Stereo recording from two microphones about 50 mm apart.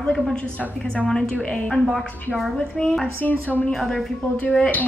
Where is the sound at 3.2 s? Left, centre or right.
Left.